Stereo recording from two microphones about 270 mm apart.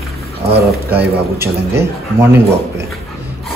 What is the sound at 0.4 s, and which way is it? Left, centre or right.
Speech, right.